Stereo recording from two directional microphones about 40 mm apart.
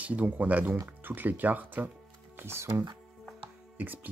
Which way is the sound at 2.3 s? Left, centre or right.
Right.